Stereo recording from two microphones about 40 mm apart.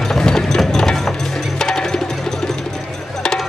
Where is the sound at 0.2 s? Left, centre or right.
Centre.